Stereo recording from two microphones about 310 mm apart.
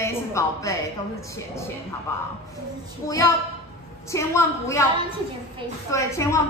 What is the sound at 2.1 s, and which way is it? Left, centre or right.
A woman's voice, centre.